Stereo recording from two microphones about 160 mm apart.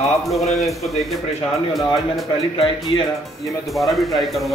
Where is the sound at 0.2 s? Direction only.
Centre (ahead or behind).